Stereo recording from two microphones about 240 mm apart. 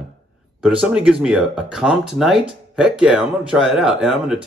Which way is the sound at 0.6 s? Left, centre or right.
Centre.